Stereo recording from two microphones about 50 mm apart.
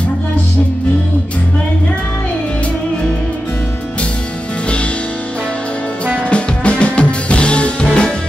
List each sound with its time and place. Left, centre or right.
6.2 s music: left